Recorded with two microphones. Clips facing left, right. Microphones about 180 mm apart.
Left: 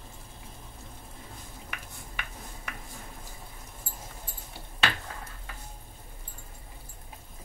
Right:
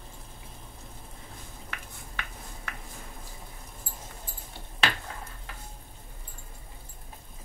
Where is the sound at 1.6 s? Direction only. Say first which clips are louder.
Right 1 dB; 15° left (ahead or behind).